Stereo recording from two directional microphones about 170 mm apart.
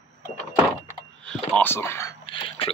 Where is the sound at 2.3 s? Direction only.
30° left (ahead or behind).